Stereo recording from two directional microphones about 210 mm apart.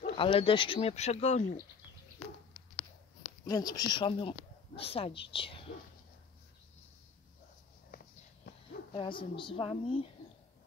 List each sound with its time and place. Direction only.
0.0 s speech: 25° left (ahead or behind)
3.4 s speech: 20° left (ahead or behind)
7.9 s walk: 45° left (ahead or behind)
8.9 s speech: 25° left (ahead or behind)